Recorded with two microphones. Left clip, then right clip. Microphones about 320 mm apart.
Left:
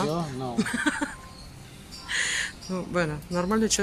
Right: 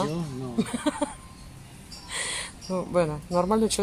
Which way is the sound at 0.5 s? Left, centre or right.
Centre.